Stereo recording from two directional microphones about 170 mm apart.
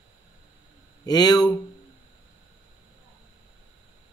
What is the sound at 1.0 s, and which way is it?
Speech, 20° left (ahead or behind).